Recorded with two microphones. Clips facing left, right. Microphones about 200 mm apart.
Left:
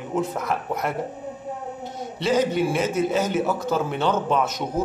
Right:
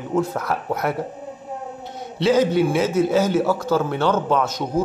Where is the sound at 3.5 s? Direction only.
20° left (ahead or behind).